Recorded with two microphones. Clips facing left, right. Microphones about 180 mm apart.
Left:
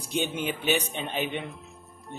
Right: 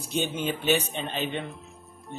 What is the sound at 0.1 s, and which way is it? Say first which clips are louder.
Speech: right 1 dB; 15° left (ahead or behind).